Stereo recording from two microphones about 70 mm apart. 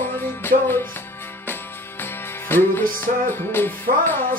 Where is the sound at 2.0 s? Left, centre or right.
Left.